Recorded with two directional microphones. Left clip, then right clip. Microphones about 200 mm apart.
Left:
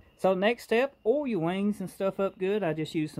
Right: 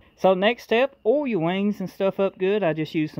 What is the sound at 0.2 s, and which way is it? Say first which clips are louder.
Speech: right 6 dB; 25° right (ahead or behind).